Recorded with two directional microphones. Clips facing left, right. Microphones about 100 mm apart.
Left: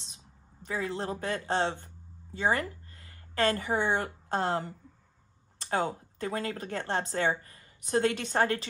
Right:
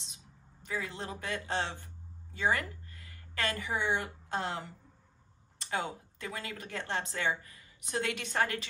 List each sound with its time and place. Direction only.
0.6 s a woman's voice: 35° left (ahead or behind)